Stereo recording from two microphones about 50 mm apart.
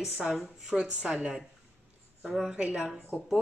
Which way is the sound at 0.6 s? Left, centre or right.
Centre.